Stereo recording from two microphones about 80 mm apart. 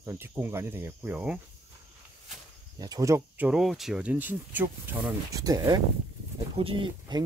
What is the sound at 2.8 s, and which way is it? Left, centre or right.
Speech, right.